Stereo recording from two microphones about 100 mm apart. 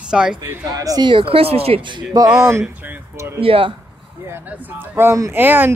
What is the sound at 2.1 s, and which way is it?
Speech, 40° right (ahead or behind).